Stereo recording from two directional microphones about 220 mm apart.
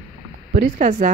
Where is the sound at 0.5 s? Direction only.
40° right (ahead or behind).